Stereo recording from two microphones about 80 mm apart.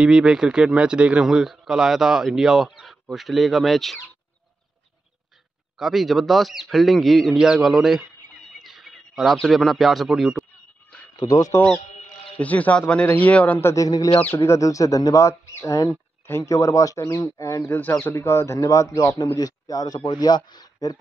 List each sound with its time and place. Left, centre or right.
0.0 s speech: centre
5.8 s speech: centre
8.3 s a sound: centre
11.1 s speech: left
12.4 s a man's voice: centre
13.7 s a man's voice: left
14.4 s speech: left
17.6 s a man's voice: left